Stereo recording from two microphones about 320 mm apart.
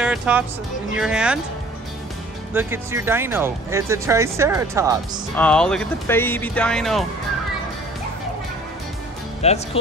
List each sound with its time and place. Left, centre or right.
0.0 s speech: centre
2.5 s speech: centre
5.3 s speech: centre
9.4 s speech: centre